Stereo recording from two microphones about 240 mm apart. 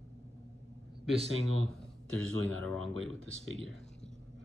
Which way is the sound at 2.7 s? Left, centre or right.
Right.